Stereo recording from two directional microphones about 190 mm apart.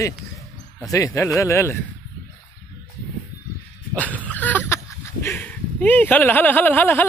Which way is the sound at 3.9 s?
10° left (ahead or behind).